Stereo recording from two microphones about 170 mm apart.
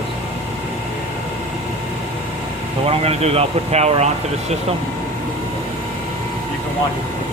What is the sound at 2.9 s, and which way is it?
Speech, 35° right (ahead or behind).